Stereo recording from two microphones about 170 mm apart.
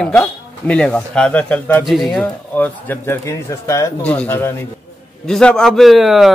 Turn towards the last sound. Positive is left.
turn(degrees=0)  # may be behind; listen again after turning